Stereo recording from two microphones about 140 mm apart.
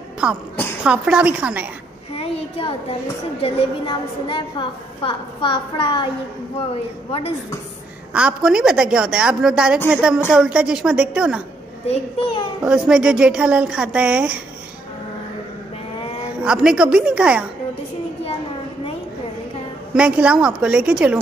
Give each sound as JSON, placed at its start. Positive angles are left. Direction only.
{"t": 0.8, "sound": "speech", "side_deg": -10}
{"t": 2.1, "sound": "a child's voice", "side_deg": 45}
{"t": 8.1, "sound": "a woman's voice", "side_deg": -10}
{"t": 11.9, "sound": "a woman's voice", "side_deg": 40}
{"t": 12.6, "sound": "speech", "side_deg": -5}
{"t": 16.4, "sound": "speech", "side_deg": -5}
{"t": 19.9, "sound": "speech", "side_deg": -10}